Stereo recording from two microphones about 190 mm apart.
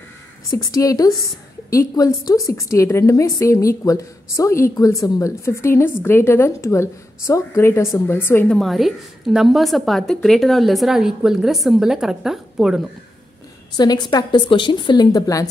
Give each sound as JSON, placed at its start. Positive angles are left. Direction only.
{"t": 0.5, "sound": "a woman's voice", "side_deg": 20}
{"t": 13.7, "sound": "a woman's voice", "side_deg": 20}